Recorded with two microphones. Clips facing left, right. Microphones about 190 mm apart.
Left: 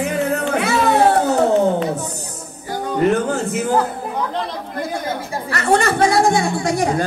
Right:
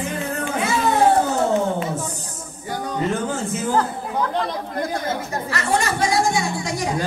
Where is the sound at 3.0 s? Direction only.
65° left (ahead or behind).